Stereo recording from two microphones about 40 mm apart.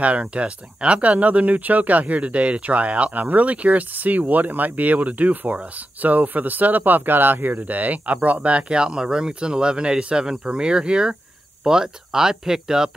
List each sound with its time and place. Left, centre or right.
0.0 s speech: right; by 12.9 s centre